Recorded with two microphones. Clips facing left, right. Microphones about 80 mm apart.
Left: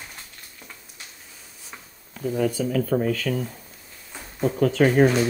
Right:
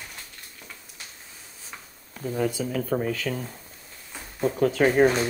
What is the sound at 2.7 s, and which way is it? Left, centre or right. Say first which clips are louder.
Speech: left 4 dB; centre.